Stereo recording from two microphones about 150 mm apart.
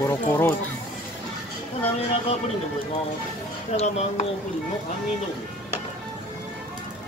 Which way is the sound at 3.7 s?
45° left (ahead or behind).